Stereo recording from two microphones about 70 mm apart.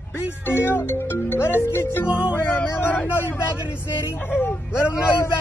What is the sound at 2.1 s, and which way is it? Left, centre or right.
Speech, centre.